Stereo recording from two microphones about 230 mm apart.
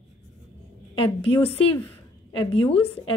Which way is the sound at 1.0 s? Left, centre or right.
Left.